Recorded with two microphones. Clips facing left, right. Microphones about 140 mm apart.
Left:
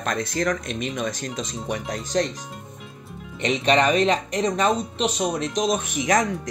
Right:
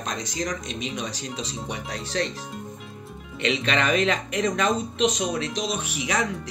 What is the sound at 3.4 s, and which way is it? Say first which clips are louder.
Speech: left 4 dB; 40° left (ahead or behind).